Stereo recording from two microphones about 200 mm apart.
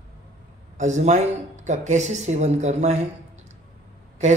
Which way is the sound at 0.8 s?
35° right (ahead or behind).